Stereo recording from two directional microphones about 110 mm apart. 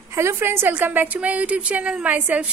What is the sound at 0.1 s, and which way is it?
A woman's voice, 25° right (ahead or behind).